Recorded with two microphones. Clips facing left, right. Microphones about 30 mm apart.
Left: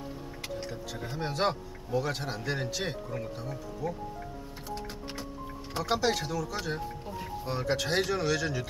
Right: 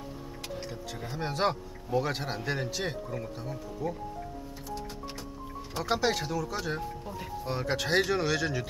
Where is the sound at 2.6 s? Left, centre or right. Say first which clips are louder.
Even; centre.